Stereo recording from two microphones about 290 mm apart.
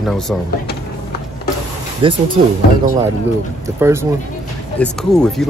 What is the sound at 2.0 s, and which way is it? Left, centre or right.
Speech, centre.